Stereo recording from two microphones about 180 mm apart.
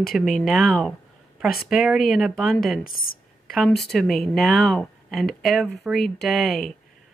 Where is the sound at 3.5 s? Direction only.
Centre (ahead or behind).